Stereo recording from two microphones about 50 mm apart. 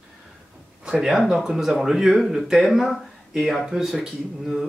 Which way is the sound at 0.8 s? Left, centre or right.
Centre.